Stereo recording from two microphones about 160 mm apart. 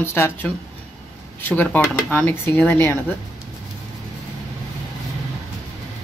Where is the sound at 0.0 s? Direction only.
15° left (ahead or behind).